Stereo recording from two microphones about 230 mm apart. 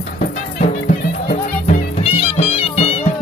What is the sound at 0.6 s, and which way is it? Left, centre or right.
Music, left.